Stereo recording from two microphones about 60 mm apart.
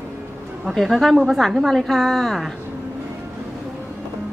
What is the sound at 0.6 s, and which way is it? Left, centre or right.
A woman's voice, centre.